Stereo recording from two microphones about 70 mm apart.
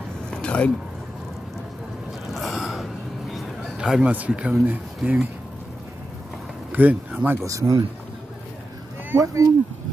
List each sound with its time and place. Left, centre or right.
0.3 s vehicle: centre
2.3 s a sound: centre
3.7 s a man's voice: centre
4.6 s speech: right
6.7 s speech: right
7.4 s speech: right
9.2 s speech: right